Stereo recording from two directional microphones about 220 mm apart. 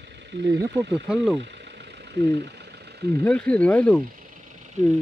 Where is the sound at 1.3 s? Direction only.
50° right (ahead or behind).